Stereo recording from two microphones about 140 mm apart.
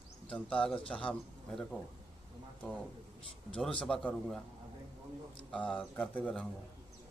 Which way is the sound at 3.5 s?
5° left (ahead or behind).